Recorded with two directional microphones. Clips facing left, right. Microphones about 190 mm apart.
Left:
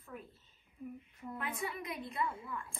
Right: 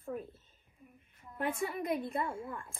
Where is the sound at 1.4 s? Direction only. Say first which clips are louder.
Right 8 dB; 50° right (ahead or behind).